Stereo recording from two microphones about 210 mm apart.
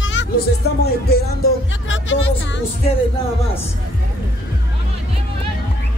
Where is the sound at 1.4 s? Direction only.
65° left (ahead or behind).